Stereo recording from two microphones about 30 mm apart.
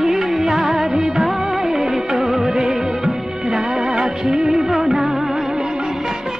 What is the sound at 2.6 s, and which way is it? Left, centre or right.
Music of bollywood, centre.